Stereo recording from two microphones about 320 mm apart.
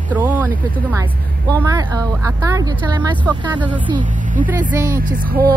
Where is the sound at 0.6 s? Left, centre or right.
Centre.